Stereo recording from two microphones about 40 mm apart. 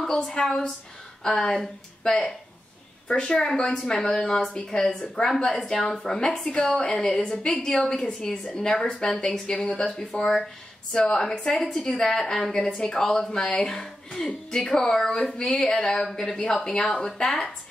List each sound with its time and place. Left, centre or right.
0.2 s a woman's voice: left
9.1 s a woman's voice: centre
12.6 s a woman's voice: left
12.9 s a woman's voice: centre